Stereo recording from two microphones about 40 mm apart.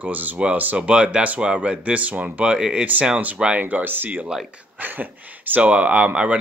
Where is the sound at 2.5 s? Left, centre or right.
Centre.